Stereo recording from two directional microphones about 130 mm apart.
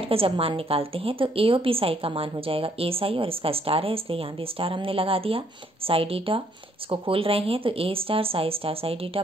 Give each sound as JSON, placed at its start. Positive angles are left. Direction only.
{"t": 0.0, "sound": "a woman's voice", "side_deg": -45}